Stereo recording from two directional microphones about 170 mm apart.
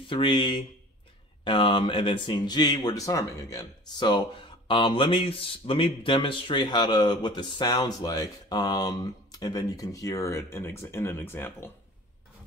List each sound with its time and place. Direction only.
0.1 s speech: 30° left (ahead or behind); by 11.7 s 15° left (ahead or behind)